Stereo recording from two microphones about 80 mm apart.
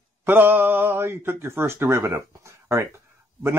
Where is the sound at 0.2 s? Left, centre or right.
Right.